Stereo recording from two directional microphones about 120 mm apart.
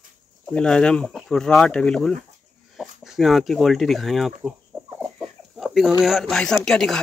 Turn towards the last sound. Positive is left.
turn(degrees=5)  # may be behind; listen again after turning